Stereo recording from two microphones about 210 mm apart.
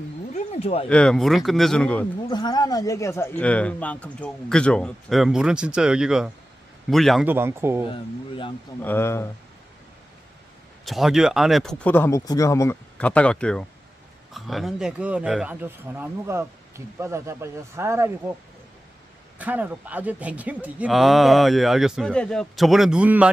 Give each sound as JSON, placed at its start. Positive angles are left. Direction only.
{"t": 0.3, "sound": "a sound", "side_deg": 30}
{"t": 0.8, "sound": "speech", "side_deg": 5}
{"t": 2.2, "sound": "speech", "side_deg": 20}
{"t": 7.2, "sound": "speech", "side_deg": -10}
{"t": 7.9, "sound": "speech", "side_deg": 25}
{"t": 8.8, "sound": "speech", "side_deg": 10}
{"t": 10.9, "sound": "speech", "side_deg": 0}
{"t": 19.3, "sound": "speech", "side_deg": -10}